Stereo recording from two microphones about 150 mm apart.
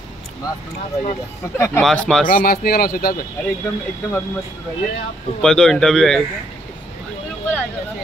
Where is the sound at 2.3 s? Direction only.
80° left.